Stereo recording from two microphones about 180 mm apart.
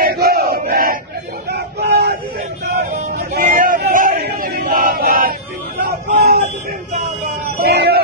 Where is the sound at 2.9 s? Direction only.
50° right (ahead or behind).